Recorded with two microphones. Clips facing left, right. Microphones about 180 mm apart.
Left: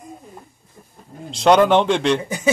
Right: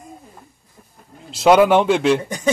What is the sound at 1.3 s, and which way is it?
Speech, 5° right (ahead or behind).